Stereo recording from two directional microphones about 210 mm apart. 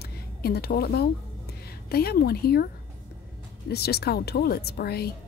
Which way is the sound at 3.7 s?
50° left (ahead or behind).